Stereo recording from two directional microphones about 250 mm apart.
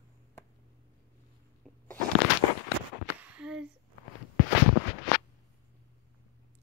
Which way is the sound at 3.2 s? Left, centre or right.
Centre.